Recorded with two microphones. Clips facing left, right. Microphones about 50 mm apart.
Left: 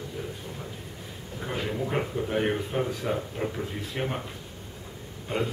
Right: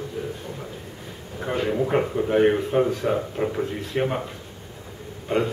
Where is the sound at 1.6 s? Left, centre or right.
Centre.